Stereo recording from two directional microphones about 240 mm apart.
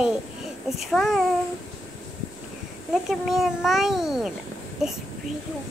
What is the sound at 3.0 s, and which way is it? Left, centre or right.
A child's voice, centre.